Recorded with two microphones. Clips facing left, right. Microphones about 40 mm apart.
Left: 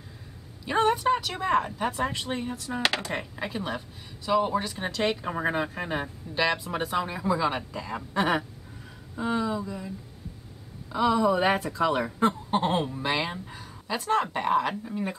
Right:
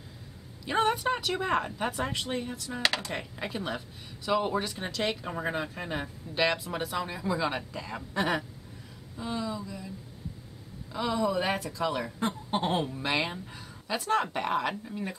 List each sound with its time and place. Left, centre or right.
0.7 s speech: centre
2.6 s speech: left
3.1 s a woman's voice: centre
4.7 s a woman's voice: centre
6.3 s speech: centre
6.8 s speech: centre
7.2 s a woman's voice: centre
8.1 s speech: left
9.1 s speech: left
10.9 s speech: left
12.4 s a woman's voice: centre
14.9 s a woman's voice: centre